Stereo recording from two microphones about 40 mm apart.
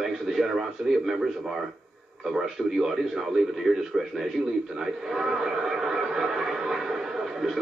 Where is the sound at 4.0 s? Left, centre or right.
Centre.